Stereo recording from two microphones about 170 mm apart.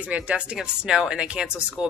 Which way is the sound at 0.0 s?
5° right (ahead or behind).